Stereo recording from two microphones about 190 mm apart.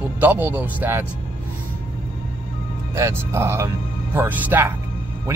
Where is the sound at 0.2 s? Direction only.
10° right (ahead or behind).